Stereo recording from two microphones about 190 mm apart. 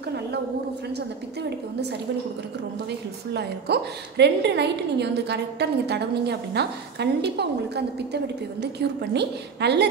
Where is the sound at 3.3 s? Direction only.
60° right (ahead or behind).